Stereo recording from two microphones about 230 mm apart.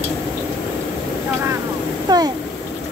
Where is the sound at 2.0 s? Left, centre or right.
Centre.